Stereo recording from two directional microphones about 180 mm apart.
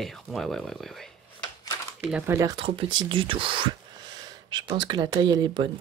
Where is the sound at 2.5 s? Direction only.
30° right (ahead or behind).